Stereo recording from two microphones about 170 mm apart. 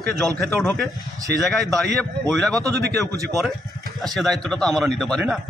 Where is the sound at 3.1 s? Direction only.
20° right (ahead or behind).